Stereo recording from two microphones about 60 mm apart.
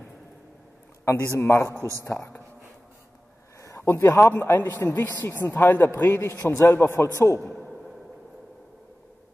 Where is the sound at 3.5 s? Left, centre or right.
Left.